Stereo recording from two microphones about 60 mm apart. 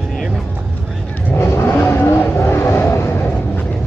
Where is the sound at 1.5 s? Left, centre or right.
Left.